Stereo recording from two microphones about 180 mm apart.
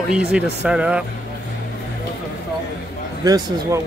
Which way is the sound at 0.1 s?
5° right (ahead or behind).